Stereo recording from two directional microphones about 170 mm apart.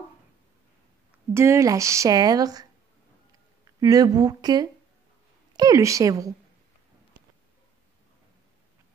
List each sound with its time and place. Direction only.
1.3 s a woman's voice: 15° right (ahead or behind)
3.8 s a woman's voice: 20° right (ahead or behind)